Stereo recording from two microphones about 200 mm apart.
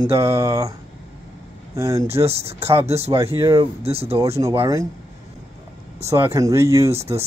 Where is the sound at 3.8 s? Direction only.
30° right (ahead or behind).